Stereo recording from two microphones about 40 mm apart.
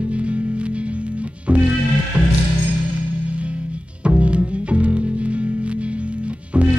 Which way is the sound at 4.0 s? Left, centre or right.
Right.